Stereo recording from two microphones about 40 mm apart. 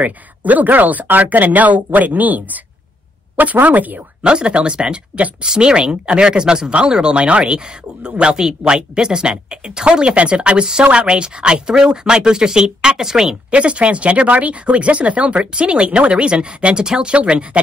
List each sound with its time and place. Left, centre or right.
0.0 s speech: right
3.6 s speech: right
4.2 s speech: right
8.4 s speech: centre
13.5 s speech: right
17.1 s speech: right